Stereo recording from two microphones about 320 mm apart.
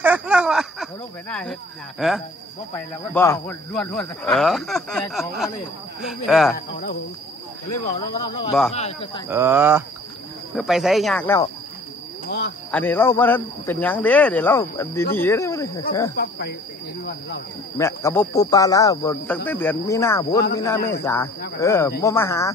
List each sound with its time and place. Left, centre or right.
0.0 s a sound: centre
1.3 s speech: centre
6.5 s speech: left
7.8 s speech: centre
9.3 s speech: centre
12.3 s speech: left
12.7 s speech: centre
16.2 s speech: left
17.7 s speech: centre